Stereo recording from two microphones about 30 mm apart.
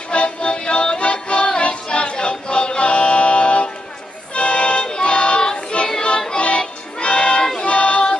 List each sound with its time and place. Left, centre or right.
0.1 s music: left
7.5 s choir: left